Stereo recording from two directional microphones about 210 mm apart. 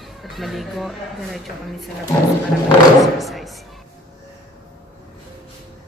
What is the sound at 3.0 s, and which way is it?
Speech, centre (ahead or behind).